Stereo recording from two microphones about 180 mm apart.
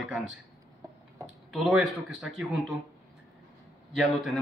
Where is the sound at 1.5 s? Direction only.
5° right (ahead or behind).